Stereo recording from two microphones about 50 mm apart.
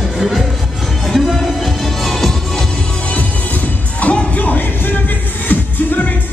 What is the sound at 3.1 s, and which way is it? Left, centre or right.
Music, left.